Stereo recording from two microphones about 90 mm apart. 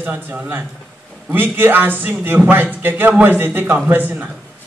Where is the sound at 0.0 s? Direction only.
20° right (ahead or behind).